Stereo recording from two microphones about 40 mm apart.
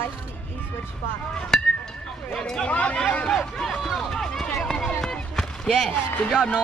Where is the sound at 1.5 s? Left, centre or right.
Centre.